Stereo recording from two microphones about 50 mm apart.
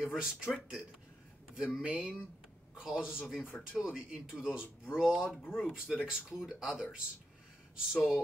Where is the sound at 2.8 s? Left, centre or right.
Centre.